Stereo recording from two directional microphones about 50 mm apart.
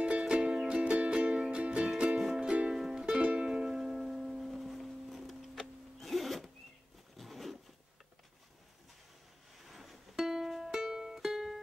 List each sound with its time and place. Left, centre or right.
0.2 s music: centre
2.0 s music: centre
7.2 s a sound: centre
9.7 s music: centre